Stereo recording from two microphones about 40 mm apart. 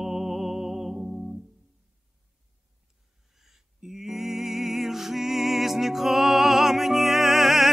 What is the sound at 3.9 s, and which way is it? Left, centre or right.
Music, centre.